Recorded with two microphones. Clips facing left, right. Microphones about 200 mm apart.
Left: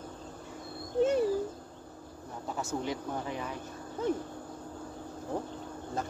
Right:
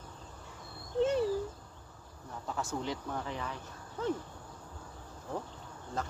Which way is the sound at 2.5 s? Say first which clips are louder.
Left 2 dB; 15° left (ahead or behind).